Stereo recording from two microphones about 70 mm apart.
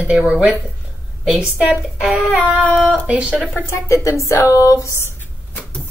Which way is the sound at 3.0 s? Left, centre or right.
Centre.